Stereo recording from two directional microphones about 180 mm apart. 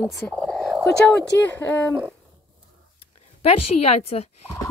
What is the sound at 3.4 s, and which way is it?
Speech, 35° left (ahead or behind).